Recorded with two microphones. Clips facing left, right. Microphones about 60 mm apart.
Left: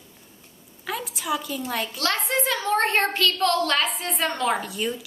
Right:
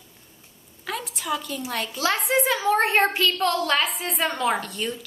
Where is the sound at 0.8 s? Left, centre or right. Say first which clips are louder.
Left 1 dB; centre.